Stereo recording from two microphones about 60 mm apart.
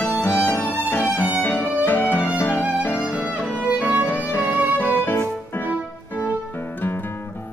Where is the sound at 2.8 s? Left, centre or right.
Left.